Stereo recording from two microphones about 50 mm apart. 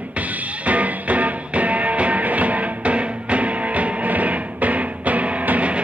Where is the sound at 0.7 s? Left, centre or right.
Right.